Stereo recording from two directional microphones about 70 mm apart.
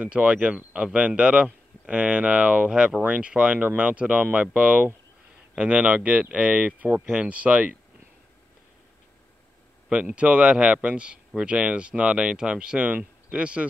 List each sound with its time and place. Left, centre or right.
0.0 s speech: centre
9.8 s speech: centre